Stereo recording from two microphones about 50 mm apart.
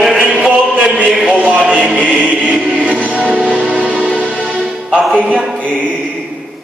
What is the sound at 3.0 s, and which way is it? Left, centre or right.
Music, right.